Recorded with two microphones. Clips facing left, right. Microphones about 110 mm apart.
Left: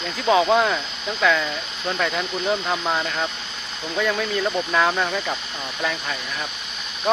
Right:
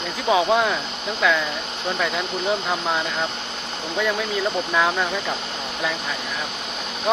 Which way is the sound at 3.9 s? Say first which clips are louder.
Left 1 dB; 10° right (ahead or behind).